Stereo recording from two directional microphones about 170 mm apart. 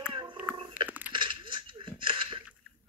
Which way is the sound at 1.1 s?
30° right (ahead or behind).